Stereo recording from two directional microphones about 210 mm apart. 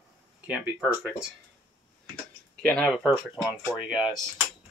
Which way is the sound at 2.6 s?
5° left (ahead or behind).